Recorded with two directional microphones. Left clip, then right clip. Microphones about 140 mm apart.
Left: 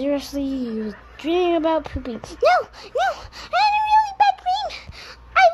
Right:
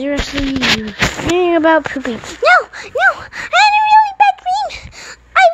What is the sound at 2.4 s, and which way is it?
Speech, 10° right (ahead or behind).